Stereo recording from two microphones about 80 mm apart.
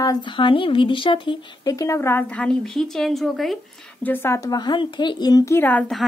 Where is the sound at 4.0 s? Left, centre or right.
Left.